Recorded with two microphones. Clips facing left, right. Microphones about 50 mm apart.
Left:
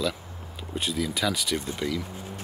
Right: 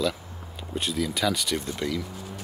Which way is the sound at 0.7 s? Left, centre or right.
Centre.